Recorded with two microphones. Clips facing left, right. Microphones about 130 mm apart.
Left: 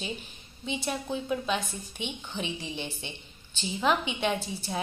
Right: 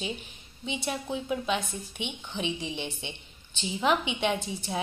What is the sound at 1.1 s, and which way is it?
A woman's voice, 15° right (ahead or behind).